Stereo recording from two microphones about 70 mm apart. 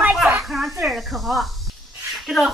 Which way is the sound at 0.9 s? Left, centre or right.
Centre.